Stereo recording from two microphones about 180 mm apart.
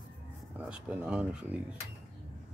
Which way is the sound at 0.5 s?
5° right (ahead or behind).